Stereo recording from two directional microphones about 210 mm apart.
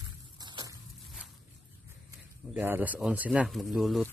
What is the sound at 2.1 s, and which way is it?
Speech, 10° right (ahead or behind).